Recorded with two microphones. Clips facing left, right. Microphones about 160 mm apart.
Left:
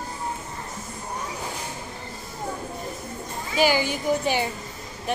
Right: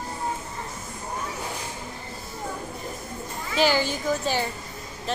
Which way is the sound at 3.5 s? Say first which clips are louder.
Left 1 dB; 10° left (ahead or behind).